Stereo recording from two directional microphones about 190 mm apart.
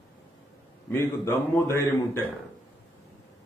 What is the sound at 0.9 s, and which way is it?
Speech, 15° left (ahead or behind).